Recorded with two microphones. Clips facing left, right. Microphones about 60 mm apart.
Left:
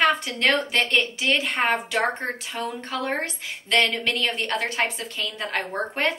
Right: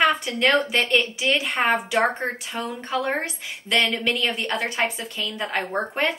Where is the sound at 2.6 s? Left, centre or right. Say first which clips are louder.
Right 3 dB; centre.